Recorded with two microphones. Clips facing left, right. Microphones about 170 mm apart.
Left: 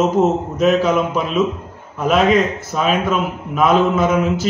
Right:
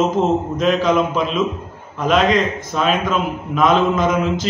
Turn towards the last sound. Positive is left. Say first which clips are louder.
# left 1 dB
turn(degrees=5)  # may be behind; listen again after turning